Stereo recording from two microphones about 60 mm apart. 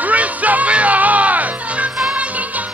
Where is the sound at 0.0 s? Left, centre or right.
Right.